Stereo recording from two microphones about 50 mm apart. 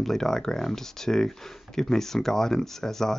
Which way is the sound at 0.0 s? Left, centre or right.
Centre.